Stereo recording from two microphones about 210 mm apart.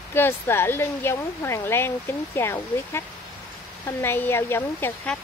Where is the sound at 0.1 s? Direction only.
10° left (ahead or behind).